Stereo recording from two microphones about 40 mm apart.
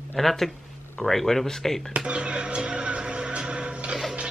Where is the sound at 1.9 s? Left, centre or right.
Right.